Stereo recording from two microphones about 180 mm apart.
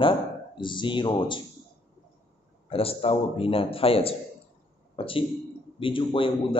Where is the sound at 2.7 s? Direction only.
30° left (ahead or behind).